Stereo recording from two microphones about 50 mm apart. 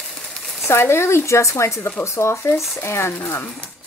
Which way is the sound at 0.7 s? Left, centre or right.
Left.